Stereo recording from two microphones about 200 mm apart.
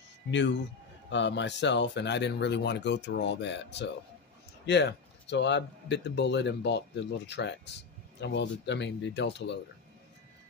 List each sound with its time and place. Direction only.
0.3 s speech: 65° left (ahead or behind)